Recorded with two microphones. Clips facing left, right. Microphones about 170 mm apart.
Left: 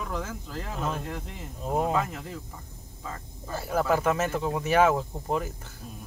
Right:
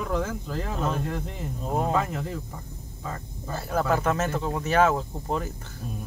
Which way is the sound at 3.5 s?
5° left (ahead or behind).